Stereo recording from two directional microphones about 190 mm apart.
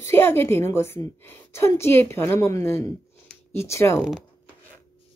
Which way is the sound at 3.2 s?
15° left (ahead or behind).